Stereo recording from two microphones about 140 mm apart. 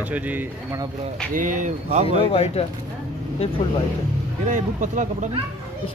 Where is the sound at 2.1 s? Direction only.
45° left (ahead or behind).